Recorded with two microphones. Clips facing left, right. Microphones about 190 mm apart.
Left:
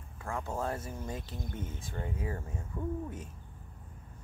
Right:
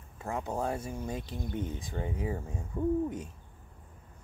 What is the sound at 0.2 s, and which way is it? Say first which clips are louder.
Speech: right 2 dB; 20° right (ahead or behind).